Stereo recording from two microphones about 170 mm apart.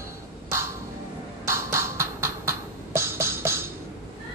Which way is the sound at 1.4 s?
15° right (ahead or behind).